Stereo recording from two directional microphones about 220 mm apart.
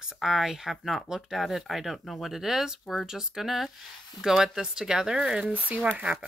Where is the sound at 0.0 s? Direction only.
5° right (ahead or behind).